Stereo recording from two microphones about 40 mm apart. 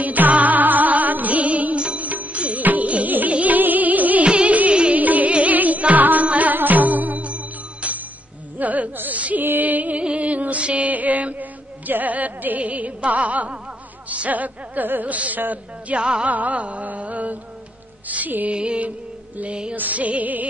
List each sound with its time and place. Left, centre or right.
0.0 s music: right
4.9 s music: right
9.4 s music: right
14.0 s speech: right
15.9 s music: right
16.3 s carnatic music: right
18.0 s music: right
18.5 s music: right
19.7 s carnatic music: right